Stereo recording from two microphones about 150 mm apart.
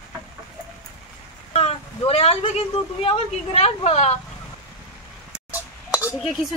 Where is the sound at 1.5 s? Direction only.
45° left (ahead or behind).